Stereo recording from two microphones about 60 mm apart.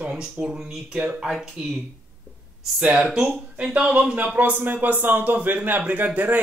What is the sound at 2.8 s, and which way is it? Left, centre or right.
A man's voice, centre.